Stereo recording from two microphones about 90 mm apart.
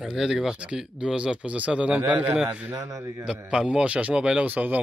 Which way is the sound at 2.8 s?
35° right (ahead or behind).